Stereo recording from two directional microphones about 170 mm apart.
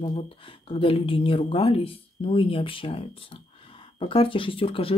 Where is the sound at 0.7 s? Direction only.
35° left (ahead or behind).